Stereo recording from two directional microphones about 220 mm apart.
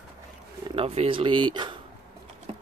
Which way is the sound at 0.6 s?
25° right (ahead or behind).